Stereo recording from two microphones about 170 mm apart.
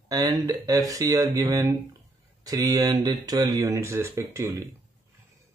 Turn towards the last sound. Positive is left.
turn(degrees=-20)  # may be behind; listen again after turning